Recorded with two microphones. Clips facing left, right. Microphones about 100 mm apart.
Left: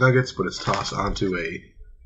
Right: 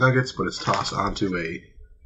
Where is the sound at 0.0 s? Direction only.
Centre (ahead or behind).